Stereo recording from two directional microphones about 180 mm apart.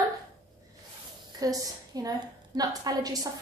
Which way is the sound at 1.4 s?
20° right (ahead or behind).